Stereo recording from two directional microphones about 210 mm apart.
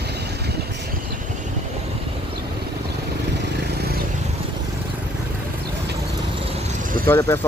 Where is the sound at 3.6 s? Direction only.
50° right (ahead or behind).